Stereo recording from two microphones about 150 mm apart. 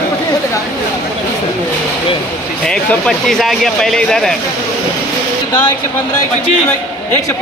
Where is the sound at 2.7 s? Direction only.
5° left (ahead or behind).